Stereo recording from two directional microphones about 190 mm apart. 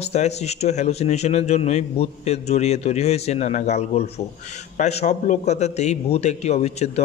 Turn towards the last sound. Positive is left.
turn(degrees=35)  # may be behind; listen again after turning